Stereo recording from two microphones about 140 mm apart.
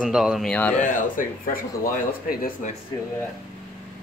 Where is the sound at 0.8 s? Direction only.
75° left (ahead or behind).